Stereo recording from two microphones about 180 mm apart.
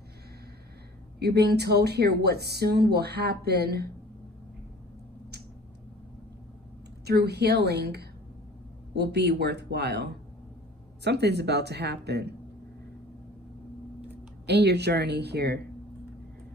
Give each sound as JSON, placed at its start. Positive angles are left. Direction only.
{"t": 1.2, "sound": "speech", "side_deg": -65}
{"t": 7.1, "sound": "speech", "side_deg": -65}
{"t": 11.1, "sound": "speech", "side_deg": -65}
{"t": 14.4, "sound": "speech", "side_deg": -70}